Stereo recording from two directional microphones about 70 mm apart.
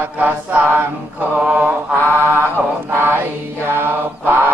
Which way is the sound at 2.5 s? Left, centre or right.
Right.